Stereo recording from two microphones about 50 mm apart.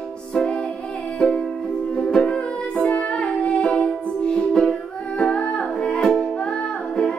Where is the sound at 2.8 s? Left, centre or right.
Left.